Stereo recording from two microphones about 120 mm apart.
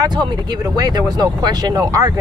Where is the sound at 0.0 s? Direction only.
35° right (ahead or behind).